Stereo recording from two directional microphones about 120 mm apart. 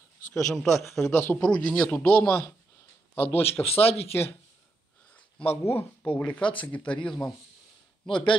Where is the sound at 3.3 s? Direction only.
55° left (ahead or behind).